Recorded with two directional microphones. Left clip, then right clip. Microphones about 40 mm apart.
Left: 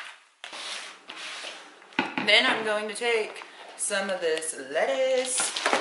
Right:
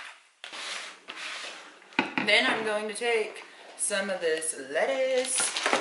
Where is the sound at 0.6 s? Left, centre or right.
Right.